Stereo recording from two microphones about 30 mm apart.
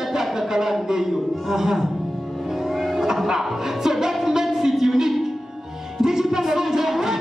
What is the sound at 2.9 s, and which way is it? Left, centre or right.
Music, centre.